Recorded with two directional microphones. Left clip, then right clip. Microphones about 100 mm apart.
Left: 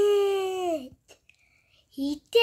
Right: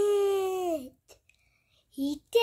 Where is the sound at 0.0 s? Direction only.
5° right (ahead or behind).